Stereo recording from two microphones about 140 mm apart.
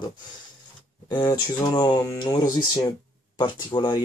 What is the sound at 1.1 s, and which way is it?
Speech, 30° left (ahead or behind).